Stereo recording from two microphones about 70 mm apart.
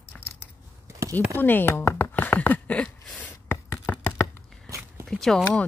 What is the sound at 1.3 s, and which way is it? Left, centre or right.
Speech, left.